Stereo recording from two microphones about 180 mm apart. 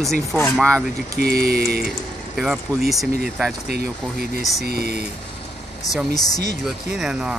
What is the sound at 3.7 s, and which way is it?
Speech, 60° right (ahead or behind).